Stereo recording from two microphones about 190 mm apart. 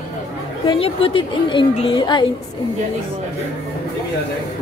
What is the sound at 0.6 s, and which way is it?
A woman's voice, 25° left (ahead or behind).